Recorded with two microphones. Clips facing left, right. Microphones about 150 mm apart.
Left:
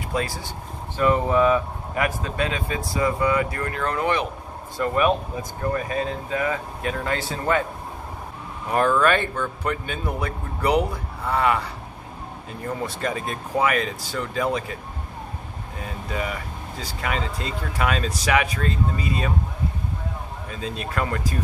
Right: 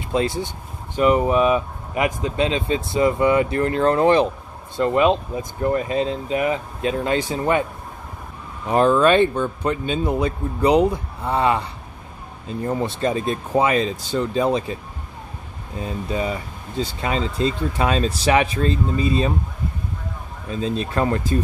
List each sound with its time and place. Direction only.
0.1 s speech: 20° right (ahead or behind)
8.6 s speech: 20° right (ahead or behind)
15.8 s speech: 30° right (ahead or behind)
20.4 s speech: 30° right (ahead or behind)